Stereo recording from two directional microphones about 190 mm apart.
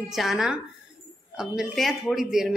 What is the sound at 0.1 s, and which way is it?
Speech, centre (ahead or behind).